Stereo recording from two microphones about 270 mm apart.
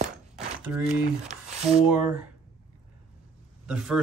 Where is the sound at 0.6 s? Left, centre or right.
Centre.